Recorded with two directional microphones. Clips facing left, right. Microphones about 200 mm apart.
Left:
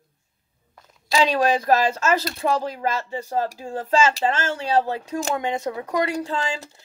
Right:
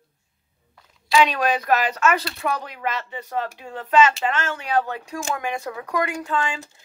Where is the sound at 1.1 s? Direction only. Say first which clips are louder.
Even; 30° left (ahead or behind).